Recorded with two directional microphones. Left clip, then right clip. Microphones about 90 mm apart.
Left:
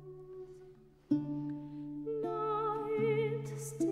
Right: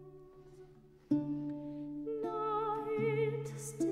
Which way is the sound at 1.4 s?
20° left (ahead or behind).